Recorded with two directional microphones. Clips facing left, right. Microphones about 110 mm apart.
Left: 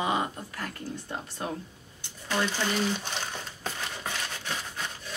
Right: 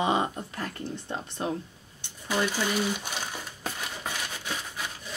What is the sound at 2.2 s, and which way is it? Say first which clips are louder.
Crumpling: right 1 dB; 10° right (ahead or behind).